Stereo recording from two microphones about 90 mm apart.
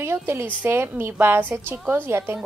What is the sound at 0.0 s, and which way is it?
Speech, 30° right (ahead or behind).